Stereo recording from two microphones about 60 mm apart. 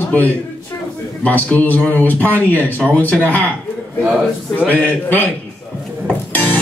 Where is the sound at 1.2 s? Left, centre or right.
Left.